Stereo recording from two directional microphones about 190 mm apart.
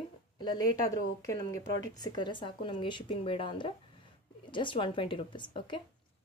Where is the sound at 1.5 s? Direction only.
20° left (ahead or behind).